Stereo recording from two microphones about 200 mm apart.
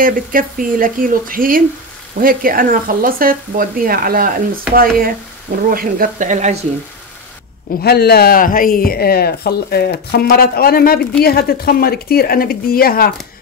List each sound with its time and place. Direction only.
0.0 s speech: 45° right (ahead or behind)
7.8 s speech: 50° left (ahead or behind)